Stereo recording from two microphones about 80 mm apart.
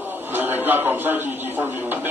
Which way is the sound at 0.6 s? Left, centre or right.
Right.